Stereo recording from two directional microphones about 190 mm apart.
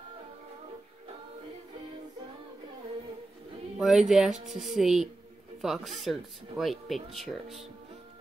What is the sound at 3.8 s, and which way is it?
Speech, 5° right (ahead or behind).